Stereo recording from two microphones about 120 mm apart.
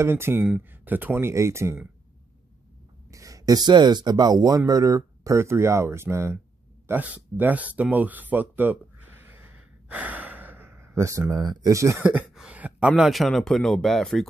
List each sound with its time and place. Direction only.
0.0 s speech: 20° right (ahead or behind)
3.1 s speech: 30° right (ahead or behind)
12.0 s speech: 10° right (ahead or behind)